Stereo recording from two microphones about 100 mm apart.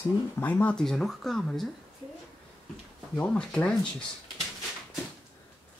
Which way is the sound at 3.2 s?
10° left (ahead or behind).